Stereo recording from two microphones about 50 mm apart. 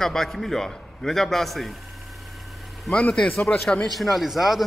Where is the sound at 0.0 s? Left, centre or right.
Centre.